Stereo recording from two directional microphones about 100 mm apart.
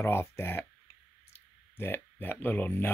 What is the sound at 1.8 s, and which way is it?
Speech, 20° left (ahead or behind).